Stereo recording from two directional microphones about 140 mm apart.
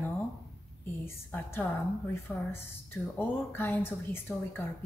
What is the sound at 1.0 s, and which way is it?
A woman's voice, 15° left (ahead or behind).